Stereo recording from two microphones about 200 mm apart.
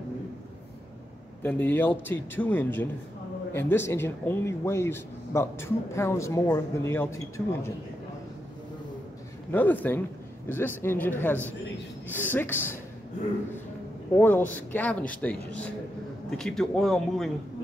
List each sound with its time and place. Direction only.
1.4 s a man's voice: 10° left (ahead or behind)
9.5 s a man's voice: 10° left (ahead or behind)
14.1 s a man's voice: 10° left (ahead or behind)